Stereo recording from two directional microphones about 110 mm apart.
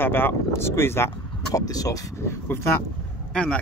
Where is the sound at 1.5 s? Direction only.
35° left (ahead or behind).